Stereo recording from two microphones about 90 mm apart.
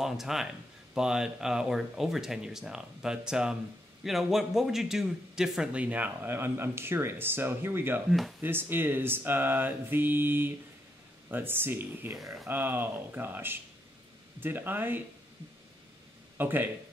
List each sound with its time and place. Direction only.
0.0 s a man's voice: 5° right (ahead or behind); by 8.0 s 25° right (ahead or behind)
8.1 s speech: centre (ahead or behind)
8.4 s speech: 25° right (ahead or behind)
16.3 s speech: 20° right (ahead or behind)